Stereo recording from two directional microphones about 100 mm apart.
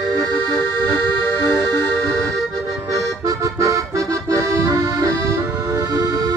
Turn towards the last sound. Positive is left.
turn(degrees=-40)  # may be behind; listen again after turning